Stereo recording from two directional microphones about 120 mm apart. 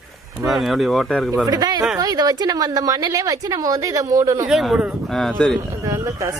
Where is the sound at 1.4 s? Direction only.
35° right (ahead or behind).